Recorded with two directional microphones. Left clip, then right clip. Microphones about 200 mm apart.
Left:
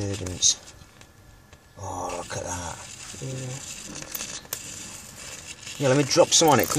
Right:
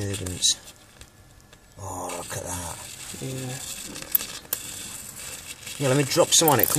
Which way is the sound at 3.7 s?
5° right (ahead or behind).